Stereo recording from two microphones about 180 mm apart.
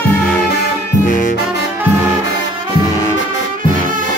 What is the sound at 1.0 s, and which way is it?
Brass instrument, 45° left (ahead or behind).